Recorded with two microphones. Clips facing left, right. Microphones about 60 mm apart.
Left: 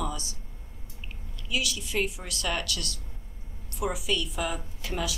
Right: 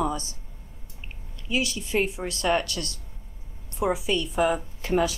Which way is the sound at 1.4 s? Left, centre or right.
Right.